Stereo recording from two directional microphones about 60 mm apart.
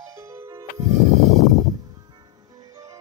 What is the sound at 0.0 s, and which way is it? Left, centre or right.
Music, right.